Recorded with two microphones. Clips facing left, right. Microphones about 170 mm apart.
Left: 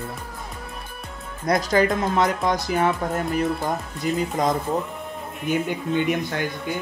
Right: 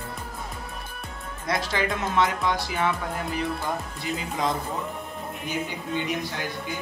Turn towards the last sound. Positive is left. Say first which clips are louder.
# left 6 dB
turn(degrees=55)  # may be behind; listen again after turning